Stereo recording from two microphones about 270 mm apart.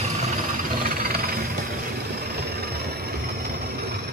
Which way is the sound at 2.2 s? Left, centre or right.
Right.